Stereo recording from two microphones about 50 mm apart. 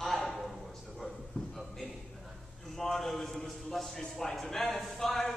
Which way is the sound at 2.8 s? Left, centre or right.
Centre.